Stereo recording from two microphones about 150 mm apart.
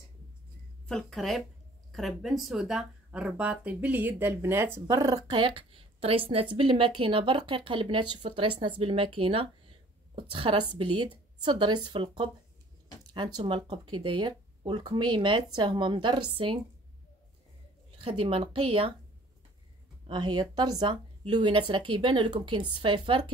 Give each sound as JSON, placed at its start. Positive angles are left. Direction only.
{"t": 0.8, "sound": "speech", "side_deg": 0}
{"t": 18.0, "sound": "speech", "side_deg": -40}
{"t": 20.1, "sound": "speech", "side_deg": -30}